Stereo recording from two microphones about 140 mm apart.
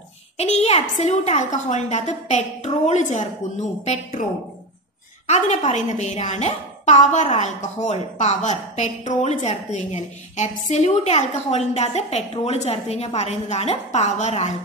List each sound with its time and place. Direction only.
0.4 s speech: 50° left (ahead or behind)
5.2 s speech: 55° left (ahead or behind)